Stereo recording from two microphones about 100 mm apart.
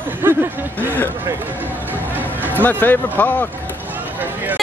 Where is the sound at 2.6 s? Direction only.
20° left (ahead or behind).